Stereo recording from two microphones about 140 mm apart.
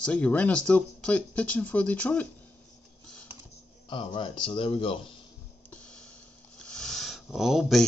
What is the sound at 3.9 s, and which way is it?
Speech, 35° left (ahead or behind).